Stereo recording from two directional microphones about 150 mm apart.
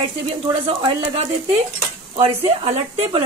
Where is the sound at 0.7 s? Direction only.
35° right (ahead or behind).